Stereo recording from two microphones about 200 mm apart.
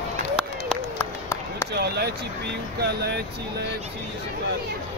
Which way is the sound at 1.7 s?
55° right (ahead or behind).